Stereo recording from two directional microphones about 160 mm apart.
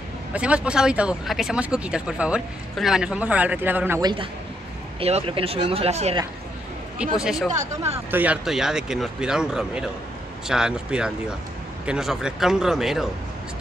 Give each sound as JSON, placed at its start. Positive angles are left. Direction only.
{"t": 0.3, "sound": "speech", "side_deg": -5}
{"t": 4.0, "sound": "a man's voice", "side_deg": -30}
{"t": 7.0, "sound": "speech", "side_deg": -5}
{"t": 7.5, "sound": "speech", "side_deg": -40}
{"t": 8.1, "sound": "speech", "side_deg": -10}